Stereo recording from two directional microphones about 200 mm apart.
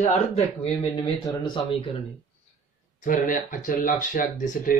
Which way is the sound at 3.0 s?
40° left (ahead or behind).